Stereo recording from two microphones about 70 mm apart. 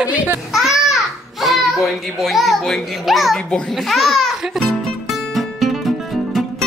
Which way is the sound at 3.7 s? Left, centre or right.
Centre.